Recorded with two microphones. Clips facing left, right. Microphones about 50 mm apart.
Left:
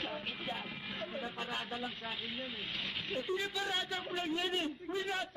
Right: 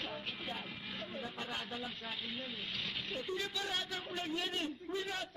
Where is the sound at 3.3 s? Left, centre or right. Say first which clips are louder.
Left 3 dB; centre.